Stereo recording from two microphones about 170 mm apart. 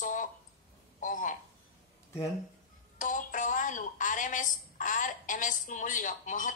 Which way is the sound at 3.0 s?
50° left (ahead or behind).